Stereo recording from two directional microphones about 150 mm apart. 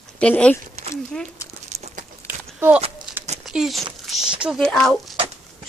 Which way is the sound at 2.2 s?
15° right (ahead or behind).